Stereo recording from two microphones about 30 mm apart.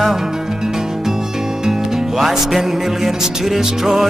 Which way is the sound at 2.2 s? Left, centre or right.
Centre.